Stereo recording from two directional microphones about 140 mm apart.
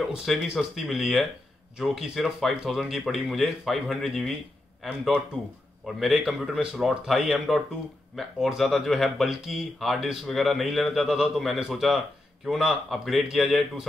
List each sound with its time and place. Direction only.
0.0 s speech: 5° right (ahead or behind)